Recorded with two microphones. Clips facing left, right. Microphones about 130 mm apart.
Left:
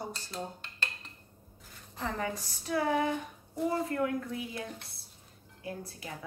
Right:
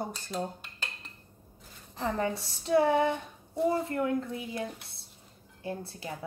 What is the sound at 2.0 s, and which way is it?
A woman's voice, 30° right (ahead or behind).